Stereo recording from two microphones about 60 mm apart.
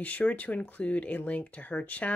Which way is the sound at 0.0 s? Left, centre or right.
Left.